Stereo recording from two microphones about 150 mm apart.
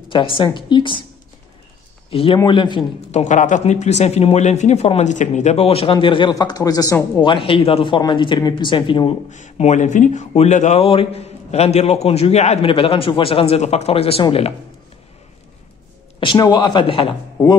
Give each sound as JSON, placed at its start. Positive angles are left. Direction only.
{"t": 0.4, "sound": "speech", "side_deg": 30}
{"t": 2.0, "sound": "speech", "side_deg": 40}
{"t": 3.1, "sound": "speech", "side_deg": 50}
{"t": 7.2, "sound": "speech", "side_deg": 40}
{"t": 9.3, "sound": "speech", "side_deg": 50}
{"t": 16.2, "sound": "speech", "side_deg": 30}